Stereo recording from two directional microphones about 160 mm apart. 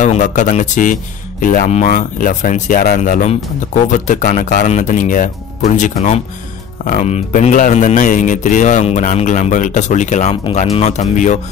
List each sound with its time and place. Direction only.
0.0 s speech: 50° left (ahead or behind)
3.0 s speech: 50° left (ahead or behind)